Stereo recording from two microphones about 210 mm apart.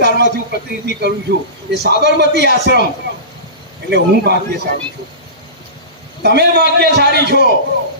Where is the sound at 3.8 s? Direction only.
50° right (ahead or behind).